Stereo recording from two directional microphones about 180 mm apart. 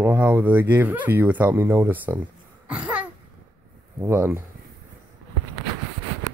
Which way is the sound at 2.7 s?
5° right (ahead or behind).